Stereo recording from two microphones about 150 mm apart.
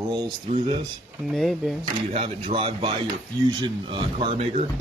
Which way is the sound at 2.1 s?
40° right (ahead or behind).